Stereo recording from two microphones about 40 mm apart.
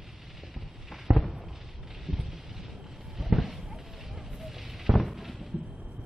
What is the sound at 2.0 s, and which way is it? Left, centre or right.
Rain, centre.